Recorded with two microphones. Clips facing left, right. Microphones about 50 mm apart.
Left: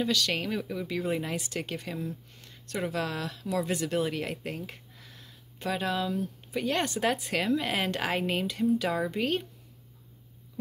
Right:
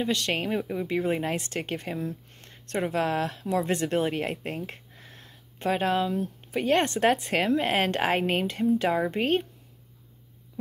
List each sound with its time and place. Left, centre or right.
0.0 s speech: right